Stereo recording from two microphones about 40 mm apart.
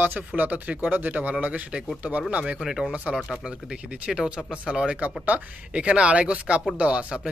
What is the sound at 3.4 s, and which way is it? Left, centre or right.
Speech, right.